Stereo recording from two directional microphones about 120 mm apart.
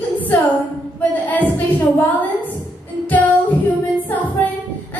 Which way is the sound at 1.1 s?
15° left (ahead or behind).